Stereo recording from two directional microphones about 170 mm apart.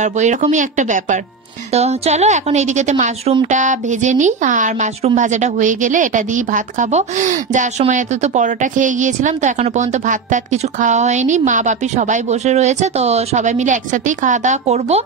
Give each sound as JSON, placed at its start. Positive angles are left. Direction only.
{"t": 0.0, "sound": "a woman's voice", "side_deg": -45}